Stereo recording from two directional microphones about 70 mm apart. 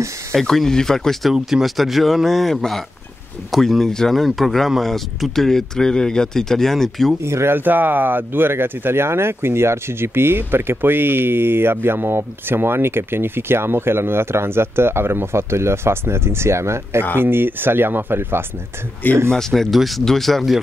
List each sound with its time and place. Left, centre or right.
0.3 s speech: centre
7.2 s speech: right
19.3 s speech: centre